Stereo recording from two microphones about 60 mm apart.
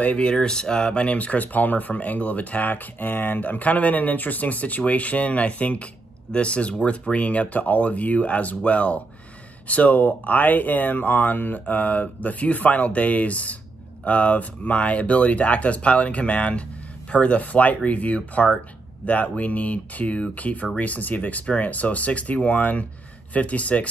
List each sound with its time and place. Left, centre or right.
0.0 s speech: centre